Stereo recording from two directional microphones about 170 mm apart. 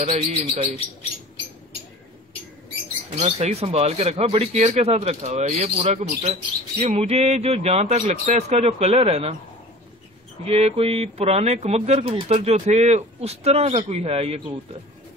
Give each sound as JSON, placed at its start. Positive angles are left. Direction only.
{"t": 0.0, "sound": "speech", "side_deg": -45}
{"t": 3.2, "sound": "speech", "side_deg": -40}
{"t": 10.4, "sound": "speech", "side_deg": -35}